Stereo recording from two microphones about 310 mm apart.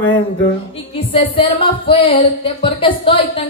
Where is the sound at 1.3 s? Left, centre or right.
Centre.